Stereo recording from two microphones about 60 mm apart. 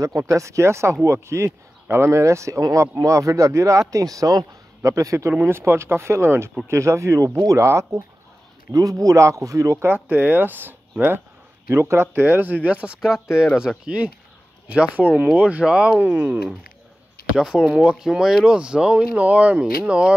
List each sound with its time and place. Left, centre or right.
0.3 s speech: right
4.8 s speech: right
5.4 s speech: right
8.7 s speech: right
9.8 s speech: right
12.6 s speech: right
17.4 s speech: centre